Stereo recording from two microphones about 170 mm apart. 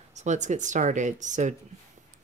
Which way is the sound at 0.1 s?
45° right (ahead or behind).